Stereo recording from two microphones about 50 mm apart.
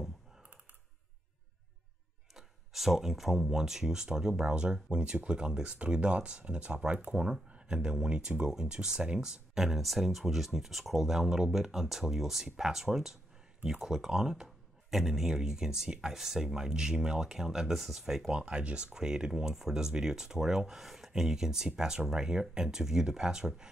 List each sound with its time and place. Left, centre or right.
2.3 s speech: centre
18.4 s speech: right
18.9 s speech: centre